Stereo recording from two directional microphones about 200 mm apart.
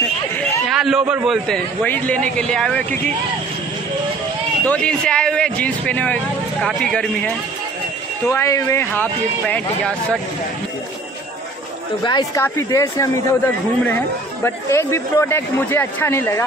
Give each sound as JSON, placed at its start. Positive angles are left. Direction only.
{"t": 0.4, "sound": "a man's voice", "side_deg": 0}
{"t": 4.6, "sound": "a man's voice", "side_deg": 5}
{"t": 8.3, "sound": "speech", "side_deg": 15}
{"t": 12.0, "sound": "speech", "side_deg": 20}